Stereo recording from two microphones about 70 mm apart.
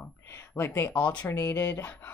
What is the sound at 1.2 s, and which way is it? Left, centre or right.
Speech, left.